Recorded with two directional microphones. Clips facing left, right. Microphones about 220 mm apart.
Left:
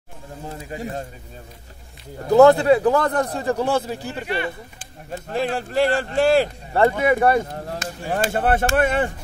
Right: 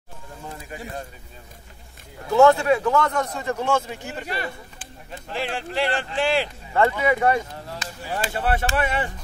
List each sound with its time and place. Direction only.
0.7 s speech: 40° left (ahead or behind)
2.1 s a man's voice: 35° left (ahead or behind)